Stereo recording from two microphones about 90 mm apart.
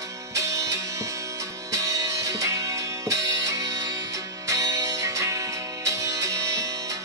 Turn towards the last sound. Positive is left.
turn(degrees=-35)  # may be behind; listen again after turning